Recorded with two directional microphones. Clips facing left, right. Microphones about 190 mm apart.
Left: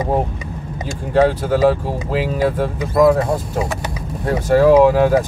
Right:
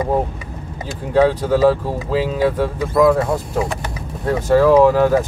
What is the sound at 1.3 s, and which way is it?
Speech, 10° left (ahead or behind).